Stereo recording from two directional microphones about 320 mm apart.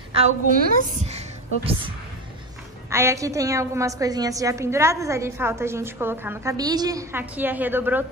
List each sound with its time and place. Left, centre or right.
0.1 s a woman's voice: right; by 8.0 s centre